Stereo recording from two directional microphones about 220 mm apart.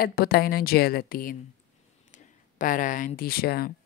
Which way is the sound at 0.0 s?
45° left (ahead or behind).